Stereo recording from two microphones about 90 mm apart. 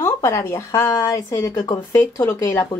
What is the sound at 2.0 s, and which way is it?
Speech, 25° left (ahead or behind).